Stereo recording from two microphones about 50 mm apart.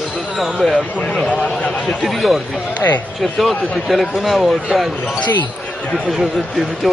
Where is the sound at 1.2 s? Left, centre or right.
Left.